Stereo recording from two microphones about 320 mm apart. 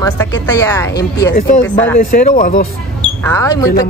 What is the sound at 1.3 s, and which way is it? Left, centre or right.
Speech, left.